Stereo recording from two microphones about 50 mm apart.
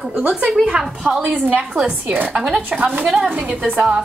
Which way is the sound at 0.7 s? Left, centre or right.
Centre.